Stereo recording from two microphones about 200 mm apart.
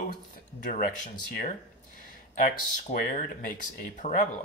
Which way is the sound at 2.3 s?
40° left (ahead or behind).